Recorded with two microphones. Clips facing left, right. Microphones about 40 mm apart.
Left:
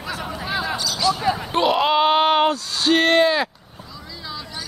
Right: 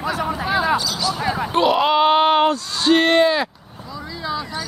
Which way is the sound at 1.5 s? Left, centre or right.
Centre.